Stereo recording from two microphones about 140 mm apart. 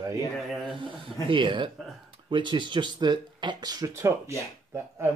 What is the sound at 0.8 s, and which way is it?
Speech, 35° right (ahead or behind).